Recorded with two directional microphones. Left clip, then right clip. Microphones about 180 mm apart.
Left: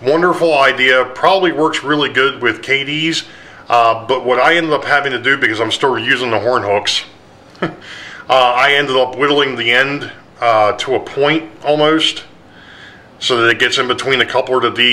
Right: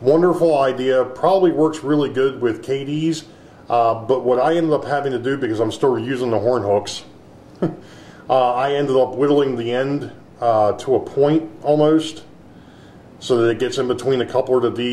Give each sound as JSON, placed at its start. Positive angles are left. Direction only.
{"t": 0.0, "sound": "speech", "side_deg": 20}
{"t": 2.9, "sound": "a man's voice", "side_deg": -5}
{"t": 3.6, "sound": "speech", "side_deg": 20}
{"t": 13.3, "sound": "speech", "side_deg": 25}